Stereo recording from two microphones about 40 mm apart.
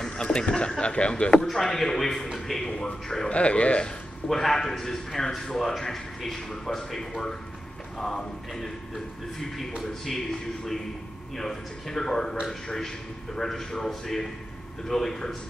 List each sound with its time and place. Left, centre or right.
0.0 s speech: centre
1.5 s a man's voice: centre
3.3 s speech: left
4.3 s a man's voice: centre